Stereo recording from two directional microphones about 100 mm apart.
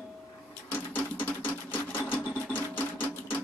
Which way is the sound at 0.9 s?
20° left (ahead or behind).